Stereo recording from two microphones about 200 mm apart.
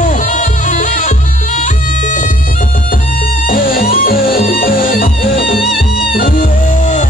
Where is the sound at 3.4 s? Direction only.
45° left (ahead or behind).